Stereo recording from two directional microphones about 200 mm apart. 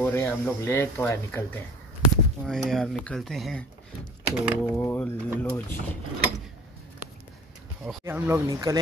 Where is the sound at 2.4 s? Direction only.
Centre (ahead or behind).